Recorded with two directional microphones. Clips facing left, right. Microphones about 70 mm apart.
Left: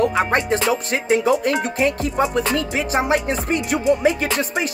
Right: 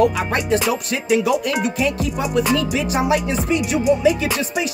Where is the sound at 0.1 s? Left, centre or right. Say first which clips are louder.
Left 1 dB; left.